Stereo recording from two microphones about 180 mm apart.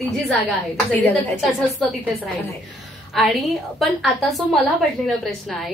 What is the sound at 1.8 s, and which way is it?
Speech, centre (ahead or behind).